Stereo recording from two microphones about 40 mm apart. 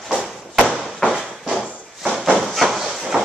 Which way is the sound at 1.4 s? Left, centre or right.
Centre.